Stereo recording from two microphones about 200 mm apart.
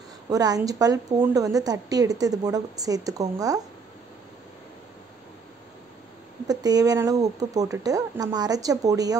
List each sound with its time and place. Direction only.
0.3 s a woman's voice: 20° right (ahead or behind)
6.4 s a woman's voice: 20° right (ahead or behind)